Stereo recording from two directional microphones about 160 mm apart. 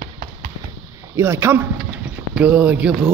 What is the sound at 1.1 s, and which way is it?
Speech, 15° right (ahead or behind).